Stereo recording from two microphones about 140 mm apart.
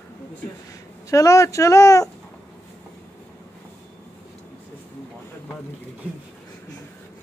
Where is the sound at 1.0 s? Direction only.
25° left (ahead or behind).